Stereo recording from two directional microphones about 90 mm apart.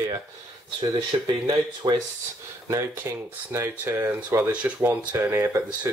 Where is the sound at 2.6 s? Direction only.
25° right (ahead or behind).